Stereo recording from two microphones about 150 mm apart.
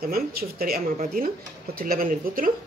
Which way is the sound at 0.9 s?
70° right (ahead or behind).